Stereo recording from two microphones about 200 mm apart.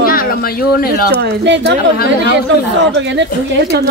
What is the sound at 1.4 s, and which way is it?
Speech, 60° right (ahead or behind).